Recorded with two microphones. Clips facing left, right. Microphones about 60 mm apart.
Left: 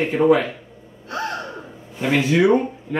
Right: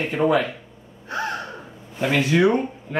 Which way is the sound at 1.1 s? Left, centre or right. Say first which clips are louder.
Even; right.